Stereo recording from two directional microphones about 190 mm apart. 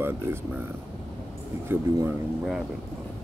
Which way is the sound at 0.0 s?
10° right (ahead or behind).